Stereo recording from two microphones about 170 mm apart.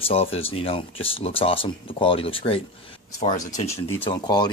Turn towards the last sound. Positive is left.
turn(degrees=25)  # may be behind; listen again after turning